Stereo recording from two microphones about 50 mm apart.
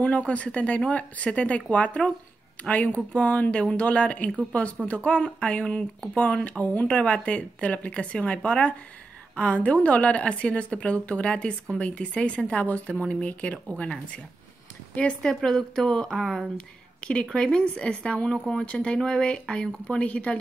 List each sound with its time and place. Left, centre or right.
0.0 s speech: left
13.7 s speech: centre
15.2 s speech: centre
16.5 s speech: left
20.1 s speech: left